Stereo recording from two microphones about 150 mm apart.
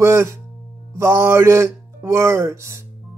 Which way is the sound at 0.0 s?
20° right (ahead or behind).